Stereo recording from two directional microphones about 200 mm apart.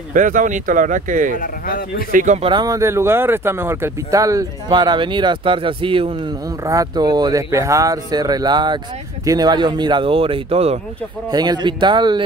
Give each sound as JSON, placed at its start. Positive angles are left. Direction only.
{"t": 0.1, "sound": "speech", "side_deg": -40}
{"t": 1.4, "sound": "speech", "side_deg": 45}
{"t": 2.1, "sound": "speech", "side_deg": -35}
{"t": 2.5, "sound": "speech", "side_deg": -20}